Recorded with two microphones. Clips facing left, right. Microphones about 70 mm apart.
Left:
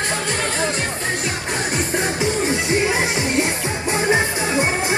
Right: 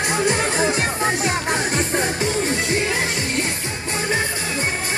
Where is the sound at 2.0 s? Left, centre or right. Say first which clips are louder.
Left 1 dB; centre.